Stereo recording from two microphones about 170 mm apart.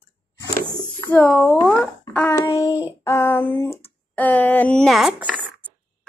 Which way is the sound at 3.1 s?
15° left (ahead or behind).